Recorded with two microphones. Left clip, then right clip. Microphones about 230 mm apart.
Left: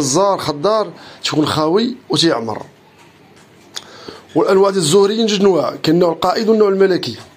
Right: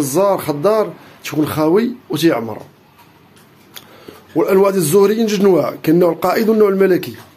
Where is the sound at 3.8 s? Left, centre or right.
Centre.